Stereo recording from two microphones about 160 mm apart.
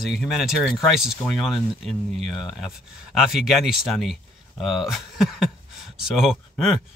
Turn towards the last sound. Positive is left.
turn(degrees=-5)  # may be behind; listen again after turning